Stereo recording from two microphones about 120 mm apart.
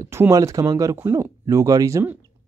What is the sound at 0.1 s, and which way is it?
Speech, 25° right (ahead or behind).